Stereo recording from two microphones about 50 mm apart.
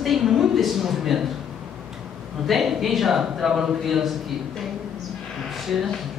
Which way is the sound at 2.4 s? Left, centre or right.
Centre.